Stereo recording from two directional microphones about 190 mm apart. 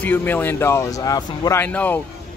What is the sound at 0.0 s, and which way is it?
Speech, 10° left (ahead or behind).